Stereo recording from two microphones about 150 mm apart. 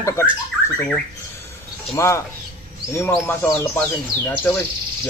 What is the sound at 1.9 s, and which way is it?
Speech, 20° left (ahead or behind).